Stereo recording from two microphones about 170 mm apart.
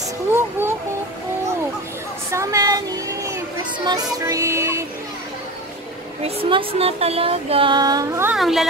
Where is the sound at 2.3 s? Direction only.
15° right (ahead or behind).